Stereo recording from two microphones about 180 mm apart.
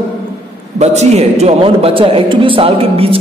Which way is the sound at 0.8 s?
35° right (ahead or behind).